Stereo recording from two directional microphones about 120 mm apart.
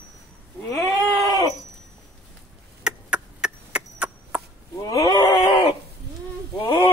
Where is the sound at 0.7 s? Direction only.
Centre (ahead or behind).